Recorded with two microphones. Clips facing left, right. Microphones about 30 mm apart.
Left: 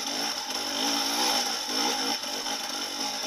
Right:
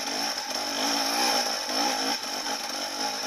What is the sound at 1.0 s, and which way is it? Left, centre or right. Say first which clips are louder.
Vehicle: right 2 dB; right.